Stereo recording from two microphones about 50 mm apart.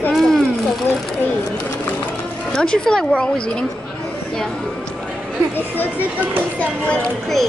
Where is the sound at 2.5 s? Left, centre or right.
Centre.